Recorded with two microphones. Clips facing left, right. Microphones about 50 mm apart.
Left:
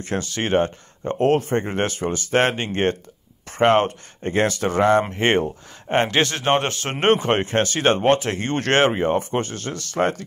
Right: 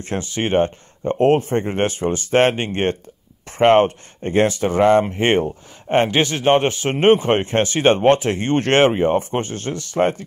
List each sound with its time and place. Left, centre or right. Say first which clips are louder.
0.0 s speech: even; right
0.3 s speech: right 3 dB; centre
7.4 s speech: right 3 dB; right
8.9 s speech: right 3 dB; centre
9.3 s speech: right 2 dB; right